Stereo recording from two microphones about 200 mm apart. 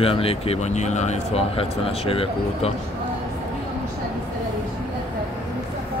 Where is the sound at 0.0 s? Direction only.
30° left (ahead or behind).